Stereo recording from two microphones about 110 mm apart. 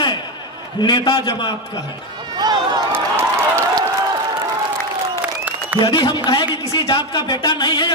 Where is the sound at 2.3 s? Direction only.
40° right (ahead or behind).